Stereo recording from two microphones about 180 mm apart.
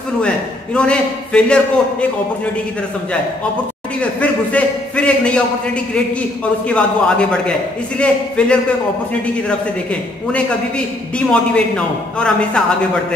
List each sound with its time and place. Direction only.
0.7 s a man's voice: 5° left (ahead or behind)
4.0 s a man's voice: 10° left (ahead or behind)
6.7 s a man's voice: 5° left (ahead or behind)
11.1 s a man's voice: 5° left (ahead or behind)